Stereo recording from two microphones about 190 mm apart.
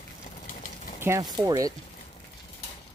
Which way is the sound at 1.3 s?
20° right (ahead or behind).